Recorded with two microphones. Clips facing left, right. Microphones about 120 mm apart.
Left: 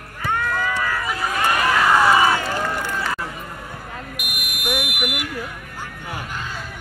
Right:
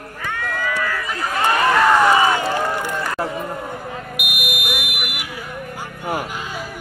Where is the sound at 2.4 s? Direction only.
25° right (ahead or behind).